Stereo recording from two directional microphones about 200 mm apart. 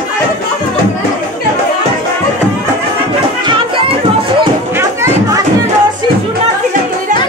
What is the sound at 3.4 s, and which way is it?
Children playing, 25° right (ahead or behind).